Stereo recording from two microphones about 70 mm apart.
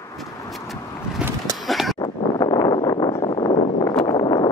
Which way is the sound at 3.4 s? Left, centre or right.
Left.